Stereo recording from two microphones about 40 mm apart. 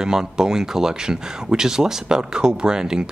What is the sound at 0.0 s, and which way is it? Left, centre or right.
Speech, centre.